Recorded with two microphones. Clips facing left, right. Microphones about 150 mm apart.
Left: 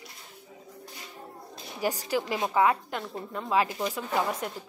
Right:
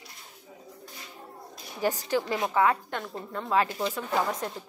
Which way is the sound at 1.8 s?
10° left (ahead or behind).